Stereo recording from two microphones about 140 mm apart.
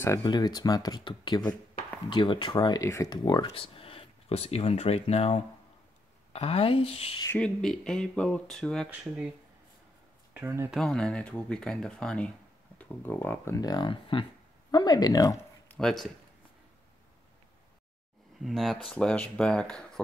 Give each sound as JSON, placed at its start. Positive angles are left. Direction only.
{"t": 0.2, "sound": "speech", "side_deg": 30}
{"t": 7.3, "sound": "speech", "side_deg": 5}
{"t": 10.3, "sound": "speech", "side_deg": -20}
{"t": 10.7, "sound": "speech", "side_deg": 5}
{"t": 13.6, "sound": "speech", "side_deg": 30}
{"t": 15.7, "sound": "speech", "side_deg": 5}
{"t": 18.4, "sound": "speech", "side_deg": 0}